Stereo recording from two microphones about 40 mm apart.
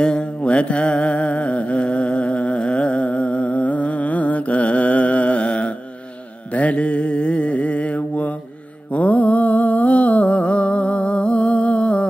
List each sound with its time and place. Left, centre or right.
0.0 s music: left
6.5 s mantra: left